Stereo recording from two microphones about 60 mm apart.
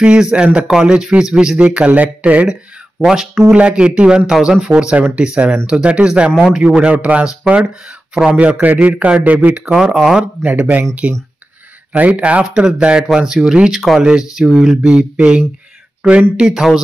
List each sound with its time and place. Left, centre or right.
0.0 s speech: centre
3.0 s speech: centre
8.4 s speech: right
9.9 s speech: centre
10.4 s speech: right
11.9 s speech: right